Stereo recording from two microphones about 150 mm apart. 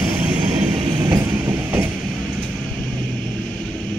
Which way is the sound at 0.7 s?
20° right (ahead or behind).